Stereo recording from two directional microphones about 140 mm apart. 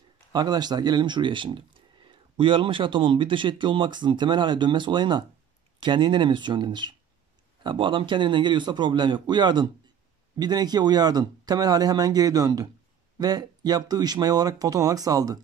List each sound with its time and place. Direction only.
0.3 s speech: 30° right (ahead or behind)